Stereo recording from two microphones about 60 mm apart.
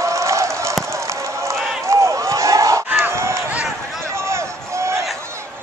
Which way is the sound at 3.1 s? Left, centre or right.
Right.